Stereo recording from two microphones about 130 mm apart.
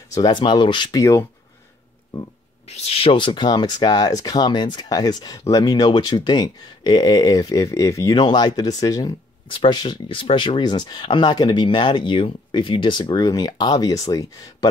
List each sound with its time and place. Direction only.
0.1 s speech: 35° left (ahead or behind)
2.7 s speech: 50° left (ahead or behind)
13.1 s speech: 30° left (ahead or behind)